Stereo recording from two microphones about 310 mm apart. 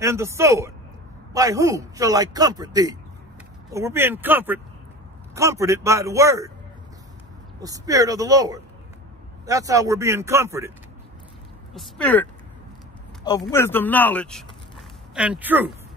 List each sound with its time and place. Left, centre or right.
0.0 s speech: centre
7.6 s speech: centre
11.7 s speech: centre
13.4 s speech: centre